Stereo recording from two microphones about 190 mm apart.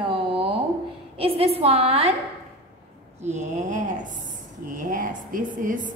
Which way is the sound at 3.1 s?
35° right (ahead or behind).